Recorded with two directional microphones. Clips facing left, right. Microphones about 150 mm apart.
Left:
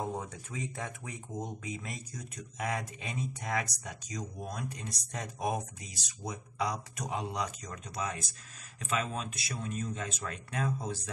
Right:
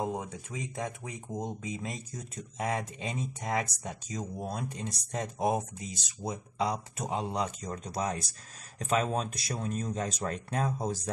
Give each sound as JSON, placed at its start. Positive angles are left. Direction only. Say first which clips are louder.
{"t": 0.2, "sound": "speech", "louder": "right 1 dB", "side_deg": -15}